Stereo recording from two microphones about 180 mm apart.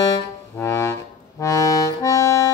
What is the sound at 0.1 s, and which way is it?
Music, 15° left (ahead or behind).